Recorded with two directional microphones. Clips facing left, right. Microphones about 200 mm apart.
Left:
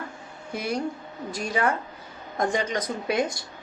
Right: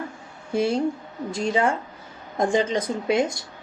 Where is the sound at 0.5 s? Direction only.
25° right (ahead or behind).